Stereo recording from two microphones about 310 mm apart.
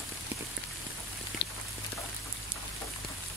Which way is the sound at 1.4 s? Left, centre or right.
Left.